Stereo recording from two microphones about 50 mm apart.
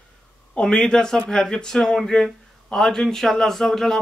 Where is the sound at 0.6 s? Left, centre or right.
Centre.